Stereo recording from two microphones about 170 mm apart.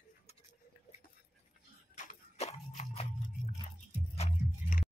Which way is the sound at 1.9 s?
45° left (ahead or behind).